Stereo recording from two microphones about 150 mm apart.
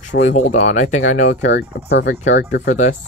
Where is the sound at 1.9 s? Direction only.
90° left.